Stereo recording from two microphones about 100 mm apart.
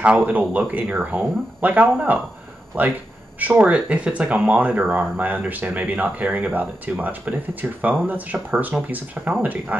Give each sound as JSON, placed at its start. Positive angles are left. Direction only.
{"t": 0.0, "sound": "speech", "side_deg": -15}